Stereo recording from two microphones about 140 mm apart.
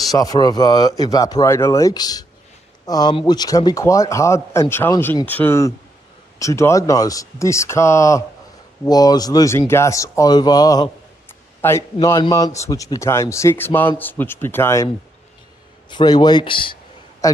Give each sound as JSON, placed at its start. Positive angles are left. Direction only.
{"t": 0.0, "sound": "speech", "side_deg": 25}
{"t": 15.9, "sound": "speech", "side_deg": 30}
{"t": 17.2, "sound": "a sound", "side_deg": 25}